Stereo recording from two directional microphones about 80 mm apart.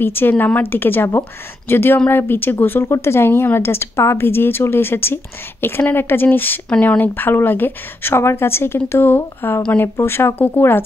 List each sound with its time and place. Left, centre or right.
0.0 s speech: left